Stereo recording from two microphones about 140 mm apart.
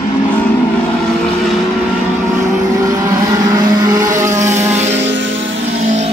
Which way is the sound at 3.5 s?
25° right (ahead or behind).